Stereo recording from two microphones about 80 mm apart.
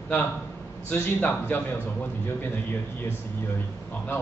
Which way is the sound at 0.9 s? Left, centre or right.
Left.